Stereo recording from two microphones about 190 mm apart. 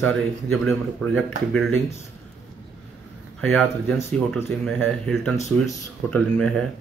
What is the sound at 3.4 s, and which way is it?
Speech, 5° left (ahead or behind).